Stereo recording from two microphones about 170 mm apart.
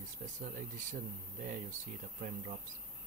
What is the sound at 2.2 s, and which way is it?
Speech, 45° right (ahead or behind).